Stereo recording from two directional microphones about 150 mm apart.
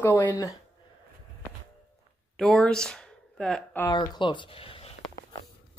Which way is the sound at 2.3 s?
Centre (ahead or behind).